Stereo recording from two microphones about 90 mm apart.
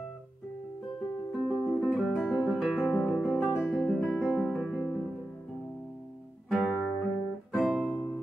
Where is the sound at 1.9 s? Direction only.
5° right (ahead or behind).